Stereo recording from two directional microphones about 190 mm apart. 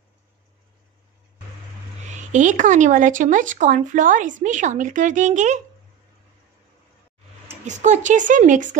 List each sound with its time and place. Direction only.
2.0 s speech: 40° right (ahead or behind)
7.6 s speech: 40° right (ahead or behind)